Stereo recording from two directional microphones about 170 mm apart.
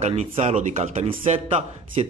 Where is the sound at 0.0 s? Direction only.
40° right (ahead or behind).